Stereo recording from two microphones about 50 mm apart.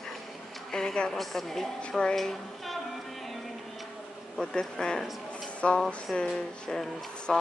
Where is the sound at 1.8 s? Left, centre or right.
Centre.